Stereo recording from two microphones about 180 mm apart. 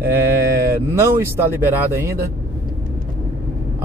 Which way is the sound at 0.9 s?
15° right (ahead or behind).